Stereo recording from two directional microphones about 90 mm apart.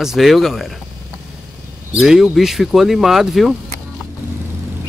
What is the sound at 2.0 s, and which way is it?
Speech, 5° right (ahead or behind).